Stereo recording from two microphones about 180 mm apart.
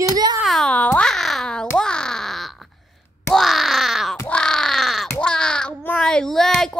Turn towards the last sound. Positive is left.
turn(degrees=0)  # may be behind; listen again after turning